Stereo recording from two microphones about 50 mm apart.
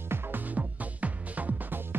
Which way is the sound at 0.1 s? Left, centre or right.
Right.